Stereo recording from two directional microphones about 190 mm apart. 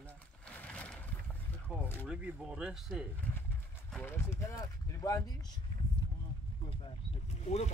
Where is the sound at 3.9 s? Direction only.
10° left (ahead or behind).